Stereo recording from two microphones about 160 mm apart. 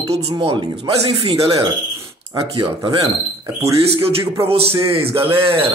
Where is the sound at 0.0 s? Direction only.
40° right (ahead or behind).